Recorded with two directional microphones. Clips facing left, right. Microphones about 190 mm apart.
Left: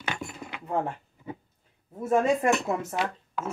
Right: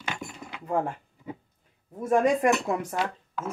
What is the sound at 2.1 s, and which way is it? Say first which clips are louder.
Speech: right 1 dB; 10° right (ahead or behind).